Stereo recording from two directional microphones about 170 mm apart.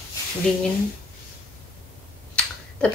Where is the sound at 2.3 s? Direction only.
5° left (ahead or behind).